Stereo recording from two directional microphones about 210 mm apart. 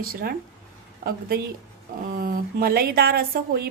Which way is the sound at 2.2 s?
45° right (ahead or behind).